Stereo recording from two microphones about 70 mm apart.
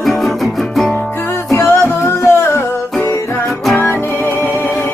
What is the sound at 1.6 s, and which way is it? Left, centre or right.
Music, left.